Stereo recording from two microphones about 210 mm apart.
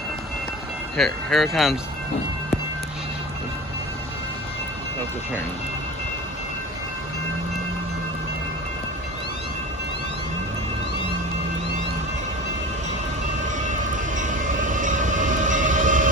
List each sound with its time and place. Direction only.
0.9 s speech: centre (ahead or behind)
13.7 s train: 35° right (ahead or behind)